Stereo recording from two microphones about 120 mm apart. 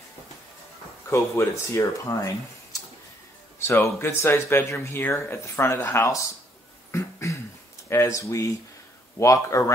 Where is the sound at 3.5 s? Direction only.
20° left (ahead or behind).